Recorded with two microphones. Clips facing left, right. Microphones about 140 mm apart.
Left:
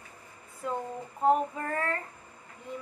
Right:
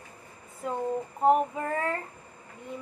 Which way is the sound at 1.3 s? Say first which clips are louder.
Right 2 dB; 15° right (ahead or behind).